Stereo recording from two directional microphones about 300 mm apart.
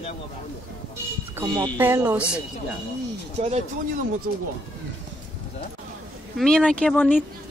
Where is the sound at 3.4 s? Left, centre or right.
Right.